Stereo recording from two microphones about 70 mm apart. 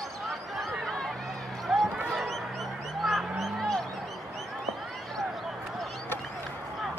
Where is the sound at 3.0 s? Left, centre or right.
Centre.